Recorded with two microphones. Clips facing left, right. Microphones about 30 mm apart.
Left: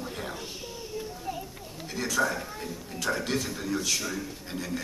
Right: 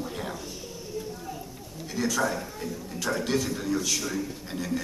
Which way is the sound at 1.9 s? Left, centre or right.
Centre.